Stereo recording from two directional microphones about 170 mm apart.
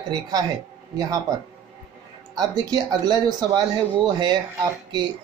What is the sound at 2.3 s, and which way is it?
Speech, 20° right (ahead or behind).